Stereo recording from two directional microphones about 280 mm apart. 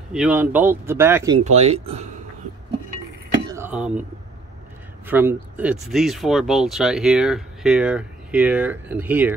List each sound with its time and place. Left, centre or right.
0.1 s speech: centre
1.4 s speech: right
3.4 s a sound: centre
5.0 s speech: centre